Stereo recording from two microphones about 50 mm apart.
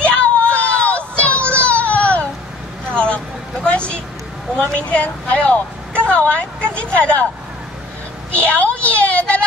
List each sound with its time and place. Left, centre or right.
0.0 s child singing: left
1.5 s baby cry: left
2.9 s vehicle: left
4.6 s speech: left
8.6 s a sound: left